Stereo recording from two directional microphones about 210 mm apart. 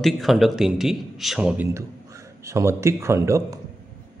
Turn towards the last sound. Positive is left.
turn(degrees=-15)  # may be behind; listen again after turning